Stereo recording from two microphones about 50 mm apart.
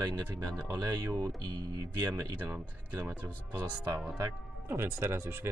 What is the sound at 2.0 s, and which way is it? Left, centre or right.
Speech, right.